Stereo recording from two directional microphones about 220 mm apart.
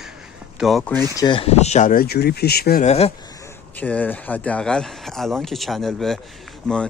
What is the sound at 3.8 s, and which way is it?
Speech, 5° left (ahead or behind).